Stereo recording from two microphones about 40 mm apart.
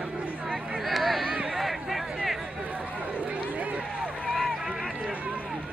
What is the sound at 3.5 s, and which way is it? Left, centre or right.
Run, right.